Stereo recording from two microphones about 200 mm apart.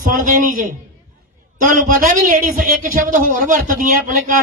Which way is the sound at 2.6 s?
45° right (ahead or behind).